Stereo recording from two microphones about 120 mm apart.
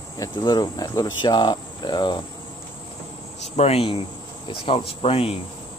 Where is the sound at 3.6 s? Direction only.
55° left (ahead or behind).